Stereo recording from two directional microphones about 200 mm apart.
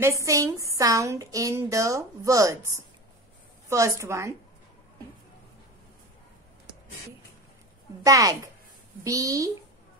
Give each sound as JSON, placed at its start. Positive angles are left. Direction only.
{"t": 0.0, "sound": "a woman's voice", "side_deg": -15}
{"t": 8.0, "sound": "a woman's voice", "side_deg": -15}